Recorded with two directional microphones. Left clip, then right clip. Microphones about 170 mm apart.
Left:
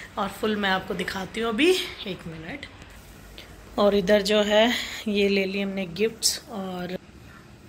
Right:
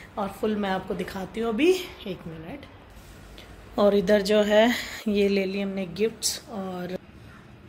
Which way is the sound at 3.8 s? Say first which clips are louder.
Even; 15° right (ahead or behind).